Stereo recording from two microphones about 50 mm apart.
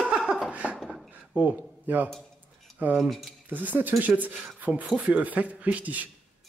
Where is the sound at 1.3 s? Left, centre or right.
Right.